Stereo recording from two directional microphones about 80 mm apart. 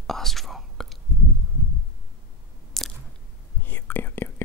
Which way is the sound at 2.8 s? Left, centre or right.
Centre.